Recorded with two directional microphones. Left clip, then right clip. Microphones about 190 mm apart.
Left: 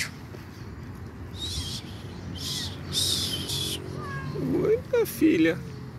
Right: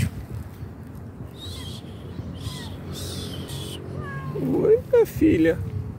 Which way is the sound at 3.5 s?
15° right (ahead or behind).